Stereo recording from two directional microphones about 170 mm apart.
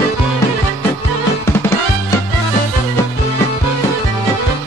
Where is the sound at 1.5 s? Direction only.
15° left (ahead or behind).